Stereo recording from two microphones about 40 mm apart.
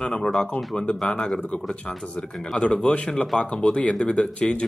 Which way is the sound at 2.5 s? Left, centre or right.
Left.